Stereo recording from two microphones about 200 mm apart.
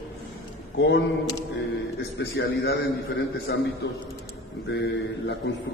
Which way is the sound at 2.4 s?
60° left (ahead or behind).